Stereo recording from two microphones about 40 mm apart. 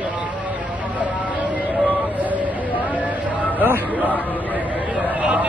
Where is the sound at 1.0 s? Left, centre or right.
Right.